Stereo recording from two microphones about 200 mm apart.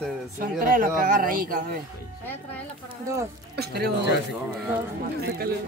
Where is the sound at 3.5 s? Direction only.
55° right (ahead or behind).